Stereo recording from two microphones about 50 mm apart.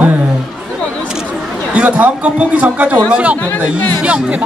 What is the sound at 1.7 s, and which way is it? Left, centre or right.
A woman's voice, right.